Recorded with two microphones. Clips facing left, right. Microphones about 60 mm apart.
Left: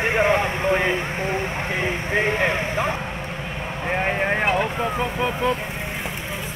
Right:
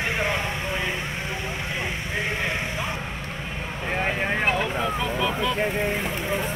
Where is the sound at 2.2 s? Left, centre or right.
Left.